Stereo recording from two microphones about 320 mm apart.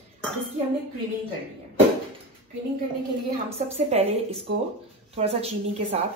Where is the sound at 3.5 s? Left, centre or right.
Centre.